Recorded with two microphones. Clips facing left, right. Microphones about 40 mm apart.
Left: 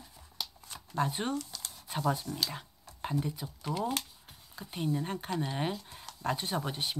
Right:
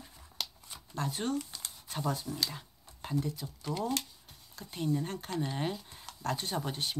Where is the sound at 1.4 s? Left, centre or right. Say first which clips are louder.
Even; centre.